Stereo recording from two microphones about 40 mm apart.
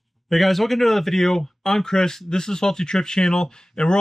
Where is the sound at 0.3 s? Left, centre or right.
Centre.